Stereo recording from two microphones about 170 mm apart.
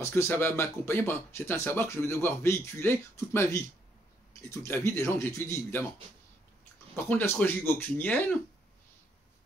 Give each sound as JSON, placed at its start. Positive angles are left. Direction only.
{"t": 0.0, "sound": "speech", "side_deg": 15}
{"t": 7.0, "sound": "speech", "side_deg": 10}